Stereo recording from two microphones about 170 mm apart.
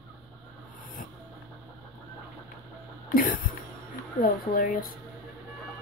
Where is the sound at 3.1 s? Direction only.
55° left (ahead or behind).